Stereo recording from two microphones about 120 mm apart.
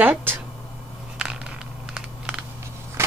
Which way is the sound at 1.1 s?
5° right (ahead or behind).